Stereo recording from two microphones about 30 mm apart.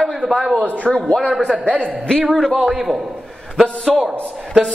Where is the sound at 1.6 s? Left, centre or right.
Left.